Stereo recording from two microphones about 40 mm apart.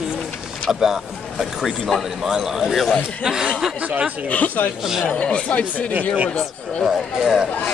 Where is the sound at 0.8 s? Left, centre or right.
Centre.